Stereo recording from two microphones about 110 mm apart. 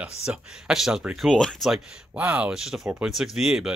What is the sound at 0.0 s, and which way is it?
Speech, 10° right (ahead or behind).